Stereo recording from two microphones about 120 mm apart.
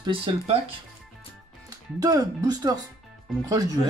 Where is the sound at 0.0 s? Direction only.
50° right (ahead or behind).